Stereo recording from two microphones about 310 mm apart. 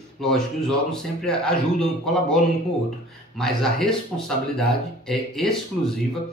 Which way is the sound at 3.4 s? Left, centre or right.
Centre.